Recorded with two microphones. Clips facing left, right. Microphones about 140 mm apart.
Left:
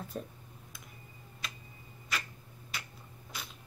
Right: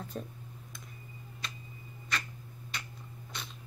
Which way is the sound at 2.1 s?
5° left (ahead or behind).